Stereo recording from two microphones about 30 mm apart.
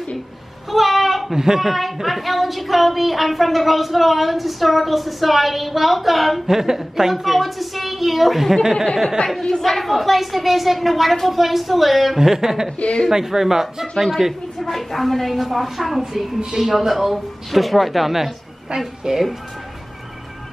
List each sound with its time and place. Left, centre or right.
0.7 s a sound: centre
1.3 s a woman's voice: centre
6.4 s speech: centre
7.2 s a woman's voice: centre
9.2 s a woman's voice: left
9.6 s a woman's voice: centre
12.2 s speech: centre
14.6 s a woman's voice: centre
16.0 s a woman's voice: centre